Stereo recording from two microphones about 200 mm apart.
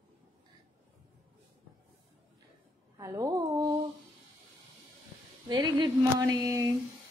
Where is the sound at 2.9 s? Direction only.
15° right (ahead or behind).